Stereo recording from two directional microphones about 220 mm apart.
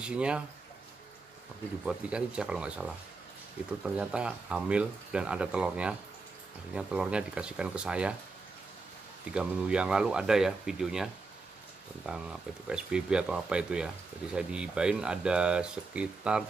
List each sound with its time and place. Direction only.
0.0 s speech: 5° right (ahead or behind)
1.9 s speech: 5° right (ahead or behind)
9.3 s speech: 5° right (ahead or behind)
12.1 s speech: 5° right (ahead or behind)